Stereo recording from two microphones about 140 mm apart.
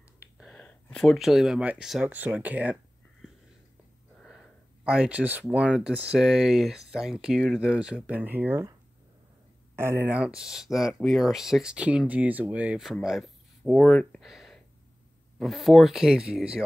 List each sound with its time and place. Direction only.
0.4 s speech: 5° left (ahead or behind)
4.2 s speech: centre (ahead or behind); by 8.6 s 15° right (ahead or behind)
9.8 s speech: 15° right (ahead or behind)